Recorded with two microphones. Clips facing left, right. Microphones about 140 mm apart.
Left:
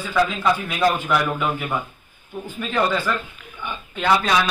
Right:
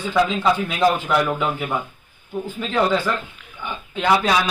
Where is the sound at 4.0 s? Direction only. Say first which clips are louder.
Right 1 dB; 10° right (ahead or behind).